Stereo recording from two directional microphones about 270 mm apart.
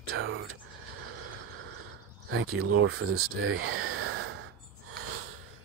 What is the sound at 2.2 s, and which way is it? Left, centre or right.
Speech, right.